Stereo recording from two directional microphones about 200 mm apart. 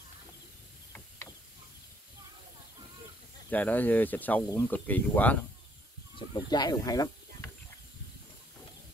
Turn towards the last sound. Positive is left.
turn(degrees=20)  # may be behind; listen again after turning